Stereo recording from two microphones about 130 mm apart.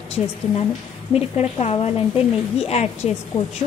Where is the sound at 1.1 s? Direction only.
50° left (ahead or behind).